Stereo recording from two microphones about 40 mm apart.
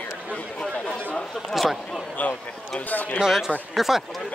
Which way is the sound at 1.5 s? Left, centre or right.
Centre.